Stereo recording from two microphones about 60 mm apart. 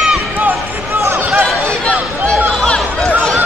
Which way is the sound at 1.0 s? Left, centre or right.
Right.